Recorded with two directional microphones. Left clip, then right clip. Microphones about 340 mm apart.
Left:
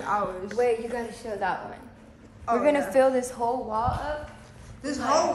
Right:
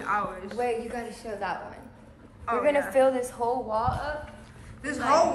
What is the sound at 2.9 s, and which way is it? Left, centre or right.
Speech, left.